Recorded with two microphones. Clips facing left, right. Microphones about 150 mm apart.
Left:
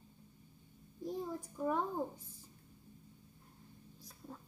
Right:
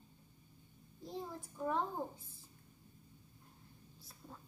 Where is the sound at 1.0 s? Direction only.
10° left (ahead or behind).